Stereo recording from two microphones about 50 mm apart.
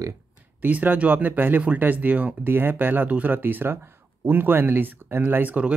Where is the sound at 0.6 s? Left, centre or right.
Right.